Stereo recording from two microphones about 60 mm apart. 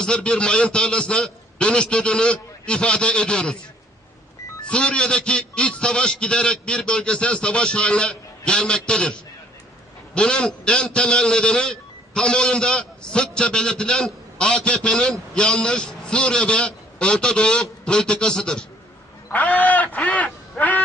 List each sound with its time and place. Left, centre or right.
0.0 s a man's voice: centre
4.6 s a man's voice: centre
19.3 s bird: left
20.5 s owl: left